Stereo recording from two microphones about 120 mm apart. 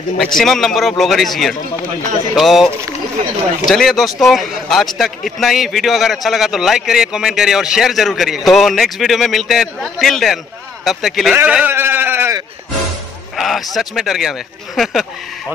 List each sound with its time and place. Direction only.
0.2 s speech: 5° left (ahead or behind)
11.3 s sheep: 10° right (ahead or behind)
13.4 s speech: centre (ahead or behind)